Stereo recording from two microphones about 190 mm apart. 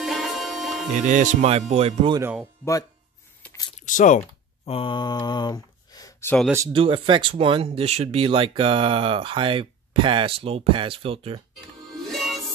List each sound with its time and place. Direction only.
0.0 s music: centre (ahead or behind)
0.9 s speech: 40° right (ahead or behind)
3.4 s a sound: 5° left (ahead or behind)
3.8 s speech: 40° left (ahead or behind)
4.6 s speech: 30° left (ahead or behind)
6.7 s speech: 25° right (ahead or behind)
12.1 s music: centre (ahead or behind)